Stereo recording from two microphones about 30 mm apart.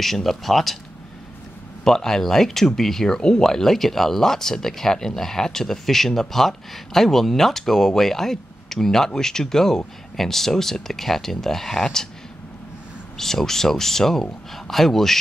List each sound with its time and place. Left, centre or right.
0.0 s speech: centre
1.9 s speech: centre
3.2 s speech: left
3.6 s speech: centre
13.2 s speech: centre